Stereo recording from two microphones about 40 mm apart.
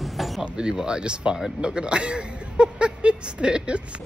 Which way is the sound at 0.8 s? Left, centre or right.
Right.